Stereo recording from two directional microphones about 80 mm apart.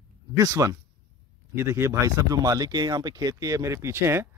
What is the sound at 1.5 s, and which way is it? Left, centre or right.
Speech, right.